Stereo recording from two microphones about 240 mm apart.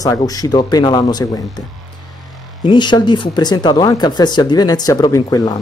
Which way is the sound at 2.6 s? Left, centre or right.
Centre.